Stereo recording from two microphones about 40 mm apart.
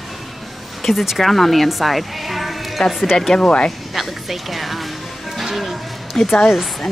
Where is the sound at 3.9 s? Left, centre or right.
Centre.